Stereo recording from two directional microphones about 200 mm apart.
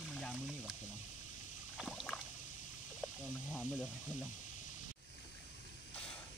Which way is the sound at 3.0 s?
10° left (ahead or behind).